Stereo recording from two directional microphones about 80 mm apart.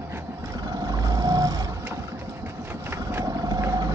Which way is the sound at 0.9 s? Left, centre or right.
Right.